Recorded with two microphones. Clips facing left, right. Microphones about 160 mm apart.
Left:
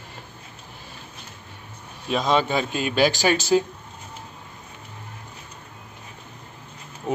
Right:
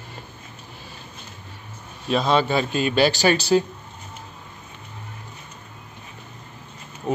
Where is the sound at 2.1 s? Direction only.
15° left (ahead or behind).